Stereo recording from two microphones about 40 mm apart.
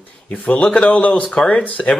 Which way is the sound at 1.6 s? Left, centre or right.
Left.